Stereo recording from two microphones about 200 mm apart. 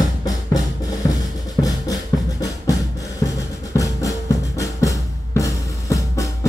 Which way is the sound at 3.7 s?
15° left (ahead or behind).